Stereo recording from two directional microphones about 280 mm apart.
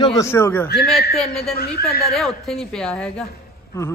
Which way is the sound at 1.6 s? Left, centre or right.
Left.